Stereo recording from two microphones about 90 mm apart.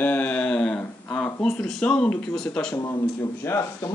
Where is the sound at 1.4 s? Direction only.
5° left (ahead or behind).